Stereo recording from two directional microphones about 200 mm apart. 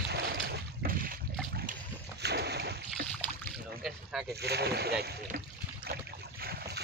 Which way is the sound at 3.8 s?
Centre (ahead or behind).